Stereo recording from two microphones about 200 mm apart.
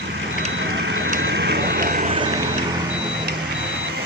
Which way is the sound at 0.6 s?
60° right (ahead or behind).